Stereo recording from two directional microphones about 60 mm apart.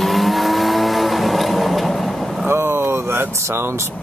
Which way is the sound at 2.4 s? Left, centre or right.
Right.